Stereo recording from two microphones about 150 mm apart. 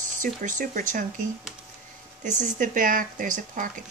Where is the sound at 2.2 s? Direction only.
60° right (ahead or behind).